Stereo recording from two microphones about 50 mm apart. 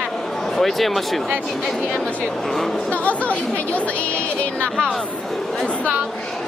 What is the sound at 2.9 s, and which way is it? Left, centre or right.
Speech, left.